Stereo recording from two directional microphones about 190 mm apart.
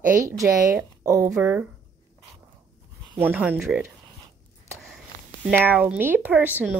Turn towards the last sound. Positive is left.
turn(degrees=-10)  # may be behind; listen again after turning